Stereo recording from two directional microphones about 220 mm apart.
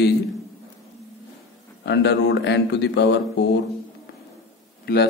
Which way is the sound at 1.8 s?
50° left (ahead or behind).